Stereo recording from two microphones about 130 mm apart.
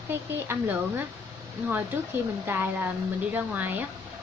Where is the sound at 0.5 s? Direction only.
15° right (ahead or behind).